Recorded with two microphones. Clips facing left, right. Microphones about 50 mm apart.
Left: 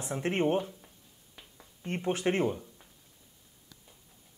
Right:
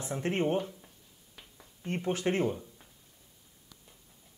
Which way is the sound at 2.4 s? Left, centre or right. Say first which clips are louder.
Left 1 dB; centre.